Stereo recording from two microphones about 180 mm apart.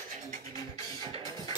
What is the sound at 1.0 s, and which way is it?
Music, 30° right (ahead or behind).